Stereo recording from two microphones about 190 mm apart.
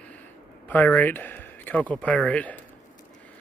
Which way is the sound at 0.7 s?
10° left (ahead or behind).